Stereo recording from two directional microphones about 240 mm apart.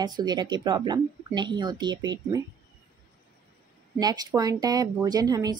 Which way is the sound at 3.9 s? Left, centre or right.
Centre.